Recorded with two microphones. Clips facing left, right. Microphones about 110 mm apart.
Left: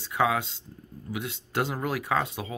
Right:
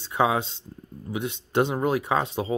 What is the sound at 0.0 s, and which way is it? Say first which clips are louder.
Speech: right 3 dB; 25° right (ahead or behind).